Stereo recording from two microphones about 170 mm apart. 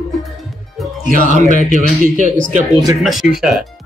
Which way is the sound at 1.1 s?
50° right (ahead or behind).